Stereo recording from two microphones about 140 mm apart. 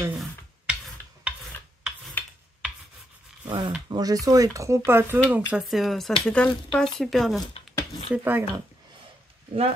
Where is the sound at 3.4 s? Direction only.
35° right (ahead or behind).